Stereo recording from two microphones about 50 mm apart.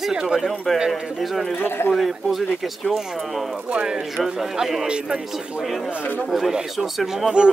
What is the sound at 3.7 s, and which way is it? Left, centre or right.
Speech, centre.